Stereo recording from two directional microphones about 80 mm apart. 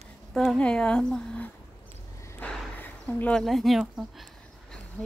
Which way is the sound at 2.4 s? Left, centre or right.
Left.